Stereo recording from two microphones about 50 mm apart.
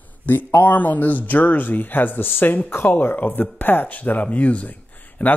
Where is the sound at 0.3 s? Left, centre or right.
Left.